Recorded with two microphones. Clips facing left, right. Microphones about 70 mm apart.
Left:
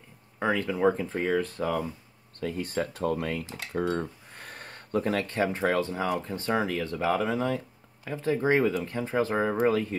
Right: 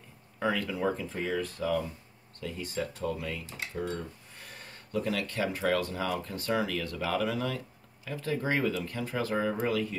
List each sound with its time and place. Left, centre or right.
0.4 s speech: left